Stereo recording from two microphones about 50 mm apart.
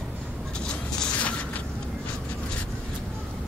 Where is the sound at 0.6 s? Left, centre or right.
Centre.